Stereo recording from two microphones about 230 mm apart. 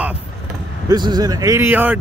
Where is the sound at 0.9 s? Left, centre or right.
Centre.